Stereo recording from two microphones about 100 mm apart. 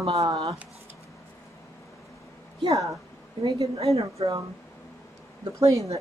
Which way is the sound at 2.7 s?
35° right (ahead or behind).